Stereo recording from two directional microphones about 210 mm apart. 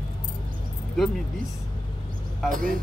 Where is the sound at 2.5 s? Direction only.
40° right (ahead or behind).